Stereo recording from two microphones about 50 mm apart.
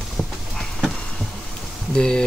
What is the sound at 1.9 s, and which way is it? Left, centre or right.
Speech, centre.